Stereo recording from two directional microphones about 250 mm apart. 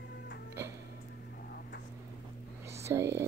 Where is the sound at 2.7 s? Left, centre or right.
Centre.